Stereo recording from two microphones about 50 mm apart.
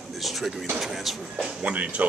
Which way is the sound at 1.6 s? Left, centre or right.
Right.